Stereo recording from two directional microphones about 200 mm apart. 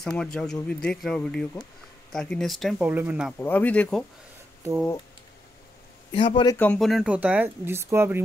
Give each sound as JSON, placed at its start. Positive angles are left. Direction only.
{"t": 0.0, "sound": "speech", "side_deg": 5}
{"t": 3.3, "sound": "speech", "side_deg": 10}
{"t": 6.1, "sound": "a man's voice", "side_deg": 25}
{"t": 6.5, "sound": "speech", "side_deg": 5}